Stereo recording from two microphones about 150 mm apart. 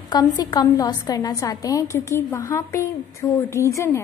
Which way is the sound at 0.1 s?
25° left (ahead or behind).